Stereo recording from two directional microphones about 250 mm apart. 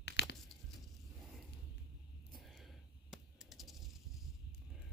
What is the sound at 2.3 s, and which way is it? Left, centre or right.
Coin, centre.